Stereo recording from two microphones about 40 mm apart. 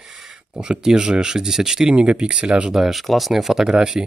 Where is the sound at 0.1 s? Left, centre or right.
Centre.